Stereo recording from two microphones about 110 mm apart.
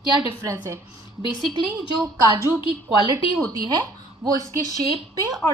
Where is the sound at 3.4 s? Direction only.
35° right (ahead or behind).